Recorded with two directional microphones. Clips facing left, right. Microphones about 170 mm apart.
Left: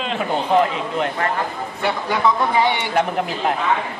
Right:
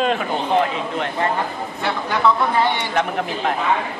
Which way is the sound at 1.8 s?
10° left (ahead or behind).